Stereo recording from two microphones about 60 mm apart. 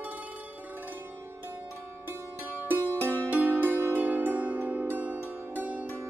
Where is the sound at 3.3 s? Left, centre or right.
Right.